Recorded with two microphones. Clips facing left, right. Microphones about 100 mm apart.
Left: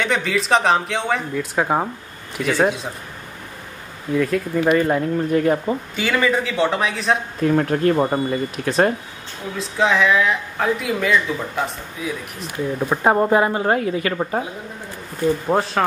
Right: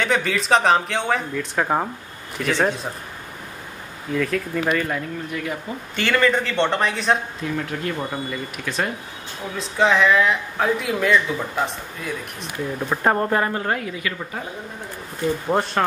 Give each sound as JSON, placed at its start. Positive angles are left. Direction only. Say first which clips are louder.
{"t": 0.0, "sound": "a woman's voice", "louder": "left 1 dB", "side_deg": 0}
{"t": 4.1, "sound": "a woman's voice", "louder": "left 3 dB", "side_deg": 10}
{"t": 4.8, "sound": "speech", "louder": "left 8 dB", "side_deg": 35}
{"t": 5.9, "sound": "speech", "louder": "right 2 dB", "side_deg": 5}
{"t": 7.4, "sound": "speech", "louder": "left 11 dB", "side_deg": 45}
{"t": 9.6, "sound": "a woman's voice", "louder": "even", "side_deg": 0}
{"t": 13.7, "sound": "speech", "louder": "left 7 dB", "side_deg": 35}
{"t": 15.4, "sound": "speech", "louder": "left 2 dB", "side_deg": 5}